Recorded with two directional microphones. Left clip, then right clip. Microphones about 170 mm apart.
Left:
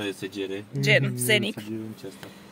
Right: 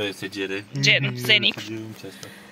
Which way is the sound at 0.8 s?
40° left (ahead or behind).